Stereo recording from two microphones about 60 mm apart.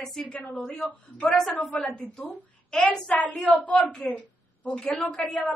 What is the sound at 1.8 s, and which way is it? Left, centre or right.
A woman's voice, centre.